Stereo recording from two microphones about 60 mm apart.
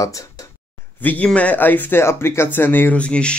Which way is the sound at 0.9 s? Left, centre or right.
Left.